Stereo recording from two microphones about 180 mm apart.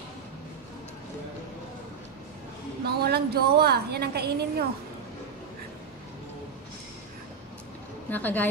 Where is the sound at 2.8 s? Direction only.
60° right (ahead or behind).